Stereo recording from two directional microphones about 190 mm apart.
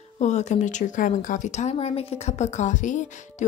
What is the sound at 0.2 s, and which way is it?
Speech, 35° left (ahead or behind).